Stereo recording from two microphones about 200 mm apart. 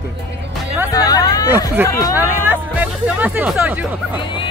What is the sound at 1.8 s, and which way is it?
Speech, 10° right (ahead or behind).